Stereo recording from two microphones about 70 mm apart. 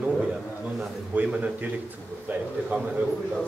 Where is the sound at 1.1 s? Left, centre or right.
Right.